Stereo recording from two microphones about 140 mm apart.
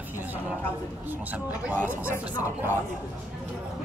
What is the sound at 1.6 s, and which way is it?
Speech, 10° right (ahead or behind).